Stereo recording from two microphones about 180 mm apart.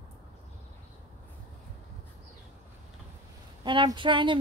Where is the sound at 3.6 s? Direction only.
25° right (ahead or behind).